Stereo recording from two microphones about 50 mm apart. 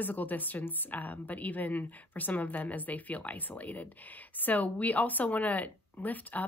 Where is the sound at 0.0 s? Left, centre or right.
Left.